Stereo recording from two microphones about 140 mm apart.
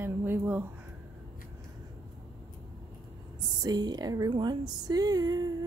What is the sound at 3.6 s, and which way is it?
Speech, 30° right (ahead or behind).